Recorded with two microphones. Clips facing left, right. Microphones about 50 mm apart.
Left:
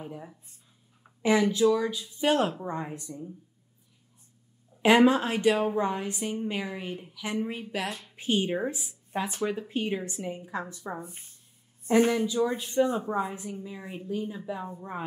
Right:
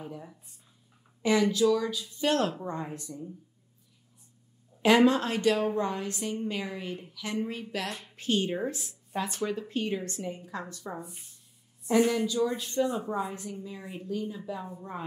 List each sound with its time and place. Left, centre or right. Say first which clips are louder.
0.0 s a woman's voice: left 1 dB; centre
4.8 s a woman's voice: left 1 dB; centre
11.0 s speech: left 1 dB; left